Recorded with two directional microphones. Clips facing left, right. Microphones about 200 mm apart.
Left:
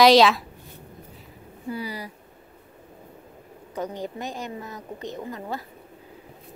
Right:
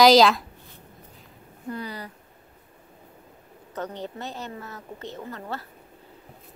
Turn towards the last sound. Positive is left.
turn(degrees=15)  # may be behind; listen again after turning